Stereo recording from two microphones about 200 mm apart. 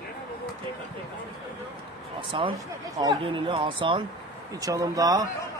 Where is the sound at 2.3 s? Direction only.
25° right (ahead or behind).